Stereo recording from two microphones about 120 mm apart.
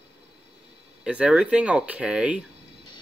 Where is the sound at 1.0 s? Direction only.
5° right (ahead or behind).